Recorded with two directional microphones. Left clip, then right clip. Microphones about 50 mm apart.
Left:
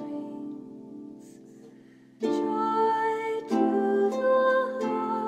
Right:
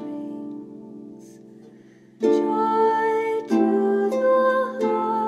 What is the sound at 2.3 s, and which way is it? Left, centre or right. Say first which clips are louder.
Music: right 6 dB; centre.